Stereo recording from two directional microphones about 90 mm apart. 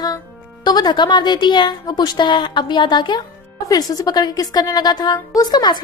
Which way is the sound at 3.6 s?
45° left (ahead or behind).